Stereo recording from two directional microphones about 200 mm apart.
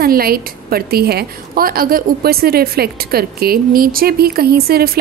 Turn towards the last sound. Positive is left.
turn(degrees=-50)  # may be behind; listen again after turning